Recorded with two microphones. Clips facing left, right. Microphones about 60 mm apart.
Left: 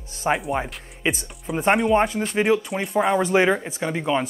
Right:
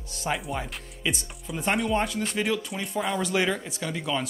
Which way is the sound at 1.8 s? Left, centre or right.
Left.